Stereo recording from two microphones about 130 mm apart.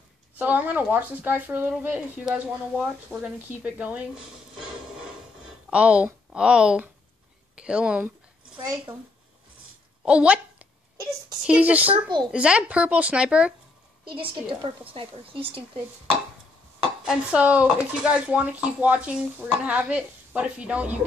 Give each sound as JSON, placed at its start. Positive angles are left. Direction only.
{"t": 0.4, "sound": "speech", "side_deg": -10}
{"t": 5.7, "sound": "speech", "side_deg": -10}
{"t": 10.0, "sound": "a woman's voice", "side_deg": -10}
{"t": 14.0, "sound": "a woman's voice", "side_deg": -45}
{"t": 17.0, "sound": "speech", "side_deg": -5}